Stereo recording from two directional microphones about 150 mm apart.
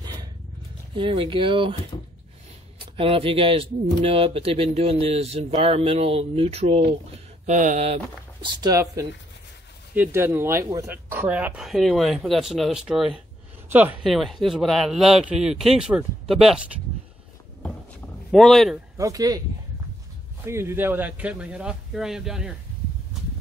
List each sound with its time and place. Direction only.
0.0 s a sound: 30° right (ahead or behind)
0.9 s speech: 35° right (ahead or behind)
3.0 s speech: 35° right (ahead or behind); by 7.8 s 55° right (ahead or behind)
7.8 s speech: 40° right (ahead or behind)
8.5 s speech: 25° right (ahead or behind)
14.0 s speech: centre (ahead or behind)
18.3 s speech: centre (ahead or behind)
18.9 s speech: 20° right (ahead or behind)
20.4 s speech: 15° right (ahead or behind)